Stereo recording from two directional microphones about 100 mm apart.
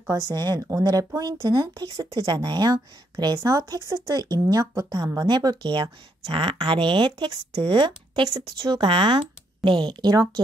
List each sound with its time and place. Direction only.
0.3 s a woman's voice: 35° right (ahead or behind)